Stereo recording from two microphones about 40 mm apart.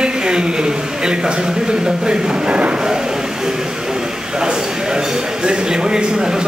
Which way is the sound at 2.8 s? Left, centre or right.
Centre.